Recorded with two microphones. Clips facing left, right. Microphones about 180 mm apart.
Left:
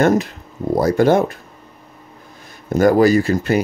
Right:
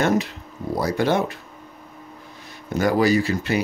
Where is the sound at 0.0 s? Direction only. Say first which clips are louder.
Left 5 dB; 50° left (ahead or behind).